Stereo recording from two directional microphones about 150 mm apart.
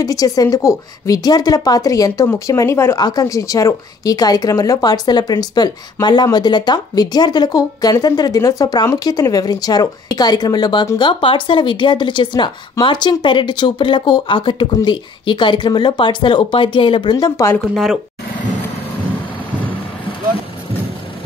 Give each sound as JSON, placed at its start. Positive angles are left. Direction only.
{"t": 0.0, "sound": "a woman's voice", "side_deg": 25}